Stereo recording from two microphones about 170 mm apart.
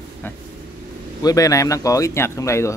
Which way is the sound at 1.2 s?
20° left (ahead or behind).